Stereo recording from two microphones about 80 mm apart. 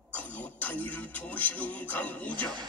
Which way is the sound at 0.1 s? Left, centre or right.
Centre.